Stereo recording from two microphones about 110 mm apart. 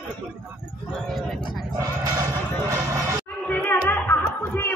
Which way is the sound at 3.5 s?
15° left (ahead or behind).